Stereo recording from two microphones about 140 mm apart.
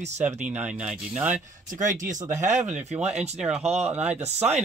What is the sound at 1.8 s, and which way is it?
Speech, 65° right (ahead or behind).